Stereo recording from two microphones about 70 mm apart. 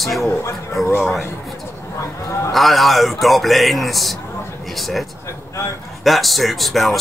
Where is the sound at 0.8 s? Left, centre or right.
Left.